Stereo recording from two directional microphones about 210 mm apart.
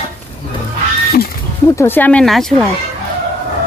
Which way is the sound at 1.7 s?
10° left (ahead or behind).